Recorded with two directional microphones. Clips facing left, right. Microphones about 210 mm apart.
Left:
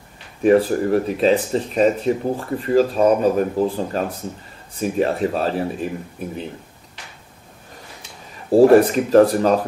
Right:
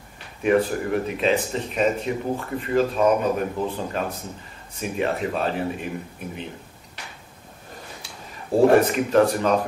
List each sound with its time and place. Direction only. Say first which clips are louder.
0.4 s speech: left 5 dB; 35° left (ahead or behind)
8.5 s speech: left 5 dB; 35° left (ahead or behind)